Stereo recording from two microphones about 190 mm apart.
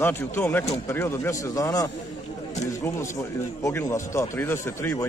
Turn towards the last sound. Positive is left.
turn(degrees=10)  # may be behind; listen again after turning